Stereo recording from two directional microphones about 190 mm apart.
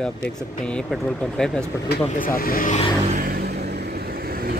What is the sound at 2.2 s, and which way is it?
Speech, 50° left (ahead or behind).